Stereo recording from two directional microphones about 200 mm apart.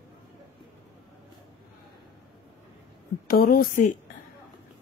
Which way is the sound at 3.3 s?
45° left (ahead or behind).